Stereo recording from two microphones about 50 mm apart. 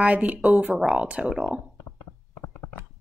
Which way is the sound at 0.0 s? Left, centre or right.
Right.